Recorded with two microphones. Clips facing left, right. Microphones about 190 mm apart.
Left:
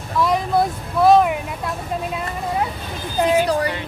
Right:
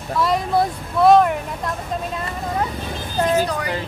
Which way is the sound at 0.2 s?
Centre (ahead or behind).